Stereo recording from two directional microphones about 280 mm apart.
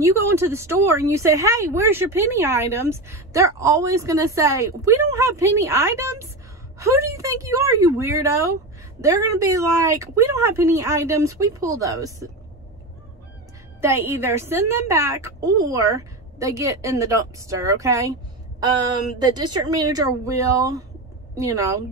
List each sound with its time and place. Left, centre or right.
0.0 s speech: centre
13.7 s speech: centre